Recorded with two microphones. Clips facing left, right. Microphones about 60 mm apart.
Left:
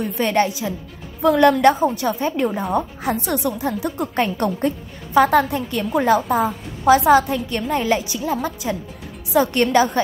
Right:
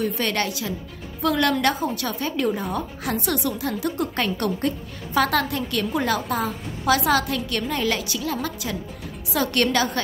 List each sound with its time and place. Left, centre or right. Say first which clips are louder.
0.0 s a woman's voice: left 5 dB; left